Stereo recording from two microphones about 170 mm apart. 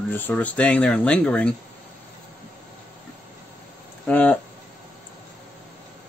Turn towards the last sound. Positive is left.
turn(degrees=5)  # may be behind; listen again after turning